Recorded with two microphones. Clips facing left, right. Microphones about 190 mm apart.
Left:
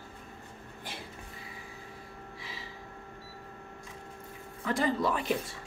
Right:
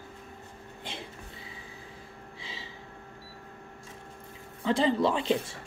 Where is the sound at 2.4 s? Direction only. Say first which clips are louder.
Right 2 dB; 25° right (ahead or behind).